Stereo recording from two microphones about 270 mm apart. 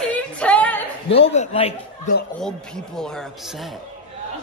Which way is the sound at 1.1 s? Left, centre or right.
Left.